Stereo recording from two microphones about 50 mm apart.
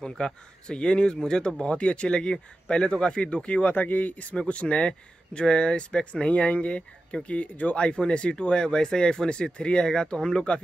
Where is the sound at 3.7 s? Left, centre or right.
Left.